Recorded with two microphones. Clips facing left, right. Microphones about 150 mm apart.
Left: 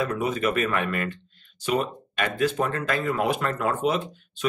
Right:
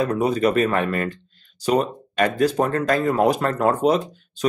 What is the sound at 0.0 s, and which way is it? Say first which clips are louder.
Speech: right 6 dB; 35° right (ahead or behind).